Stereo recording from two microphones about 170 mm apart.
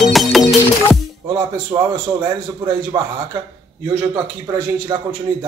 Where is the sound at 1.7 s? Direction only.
25° right (ahead or behind).